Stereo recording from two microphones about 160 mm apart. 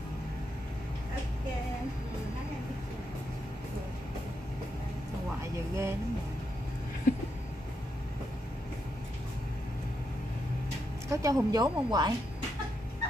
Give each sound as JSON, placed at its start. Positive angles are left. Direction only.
{"t": 5.4, "sound": "speech", "side_deg": -20}
{"t": 11.1, "sound": "speech", "side_deg": -20}